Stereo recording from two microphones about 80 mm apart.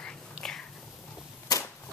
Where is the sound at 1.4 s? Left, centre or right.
Left.